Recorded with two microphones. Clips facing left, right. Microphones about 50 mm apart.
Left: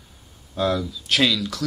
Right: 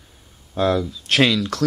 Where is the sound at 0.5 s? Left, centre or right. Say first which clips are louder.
Right 3 dB; right.